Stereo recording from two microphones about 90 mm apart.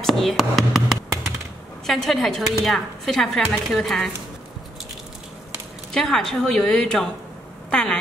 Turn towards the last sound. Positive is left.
turn(degrees=10)  # may be behind; listen again after turning